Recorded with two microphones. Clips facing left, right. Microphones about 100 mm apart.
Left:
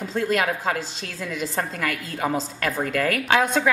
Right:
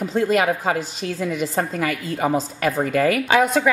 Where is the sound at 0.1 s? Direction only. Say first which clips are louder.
Right 4 dB; 10° right (ahead or behind).